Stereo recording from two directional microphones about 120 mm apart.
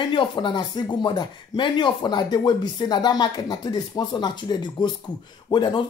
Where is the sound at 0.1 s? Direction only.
40° left (ahead or behind).